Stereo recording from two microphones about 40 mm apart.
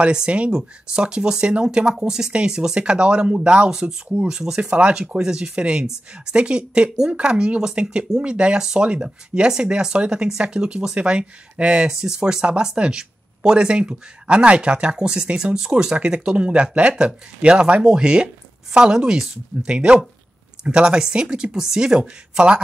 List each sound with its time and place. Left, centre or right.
0.0 s speech: right
11.9 s speech: centre